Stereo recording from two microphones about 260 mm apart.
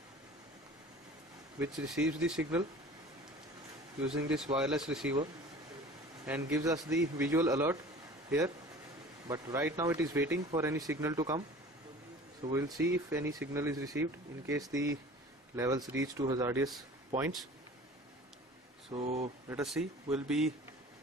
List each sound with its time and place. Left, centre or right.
1.6 s speech: centre
4.1 s speech: centre
6.2 s speech: centre
12.5 s speech: centre
18.9 s speech: right
19.5 s speech: centre